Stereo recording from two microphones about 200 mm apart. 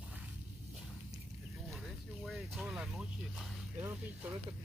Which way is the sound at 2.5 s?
Centre (ahead or behind).